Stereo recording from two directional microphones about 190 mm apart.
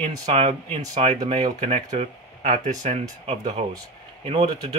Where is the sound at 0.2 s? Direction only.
35° right (ahead or behind).